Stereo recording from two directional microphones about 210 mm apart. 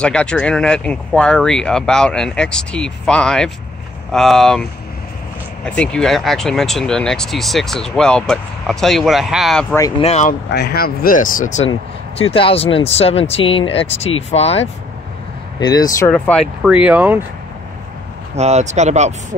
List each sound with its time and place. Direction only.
0.0 s speech: 5° left (ahead or behind)
5.7 s speech: 5° left (ahead or behind)
9.8 s speech: 15° left (ahead or behind)
10.0 s speech: 30° left (ahead or behind)
10.5 s speech: 50° left (ahead or behind); by 14.7 s 30° left (ahead or behind)
15.6 s speech: 20° left (ahead or behind)
16.1 s speech: 5° left (ahead or behind)
18.3 s speech: 30° right (ahead or behind)